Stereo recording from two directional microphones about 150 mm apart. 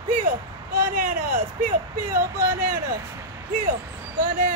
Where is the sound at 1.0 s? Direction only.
60° right (ahead or behind).